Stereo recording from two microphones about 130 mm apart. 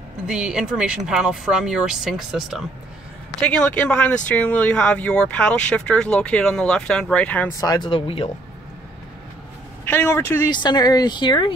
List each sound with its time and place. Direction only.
0.3 s speech: 5° right (ahead or behind)
3.3 s speech: 10° left (ahead or behind)
7.6 s speech: 30° left (ahead or behind)
7.9 s speech: 45° left (ahead or behind)
9.8 s speech: 20° left (ahead or behind)
10.5 s speech: 35° left (ahead or behind)